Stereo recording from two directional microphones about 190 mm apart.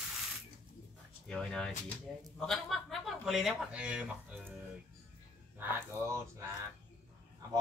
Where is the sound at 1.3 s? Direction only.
5° left (ahead or behind).